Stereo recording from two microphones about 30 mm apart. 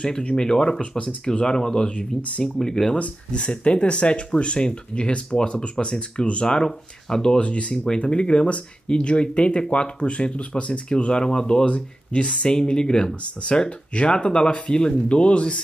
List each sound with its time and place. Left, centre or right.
0.4 s speech: left
1.9 s speech: left
2.4 s speech: centre
3.3 s speech: left
7.3 s speech: left
7.7 s speech: left
8.0 s speech: left
11.1 s speech: left
11.6 s speech: left
12.4 s speech: left
13.2 s speech: left